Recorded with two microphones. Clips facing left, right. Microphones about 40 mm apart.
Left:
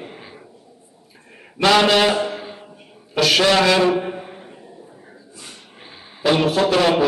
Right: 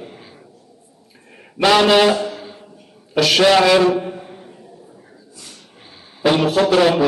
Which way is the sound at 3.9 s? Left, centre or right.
Centre.